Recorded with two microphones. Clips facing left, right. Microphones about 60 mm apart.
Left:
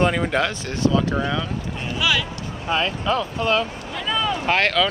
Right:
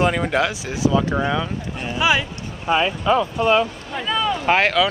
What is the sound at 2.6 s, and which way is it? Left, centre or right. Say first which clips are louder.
Speech: right 4 dB; centre.